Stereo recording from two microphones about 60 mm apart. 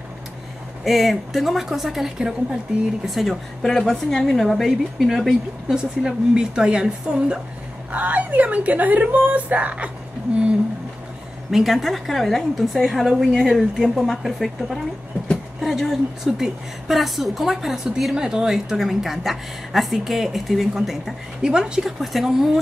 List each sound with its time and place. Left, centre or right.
0.8 s a woman's voice: centre
3.6 s a woman's voice: centre
7.9 s a woman's voice: right
11.5 s a woman's voice: centre